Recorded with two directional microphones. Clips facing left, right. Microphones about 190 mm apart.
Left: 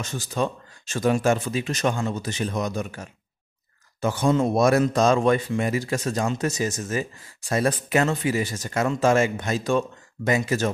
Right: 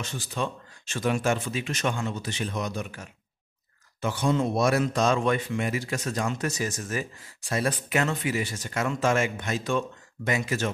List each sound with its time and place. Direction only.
0.0 s speech: 40° left (ahead or behind)
6.2 s speech: 25° left (ahead or behind)
7.4 s speech: 45° left (ahead or behind)